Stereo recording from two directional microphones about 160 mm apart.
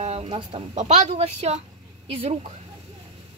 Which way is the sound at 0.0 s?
40° right (ahead or behind).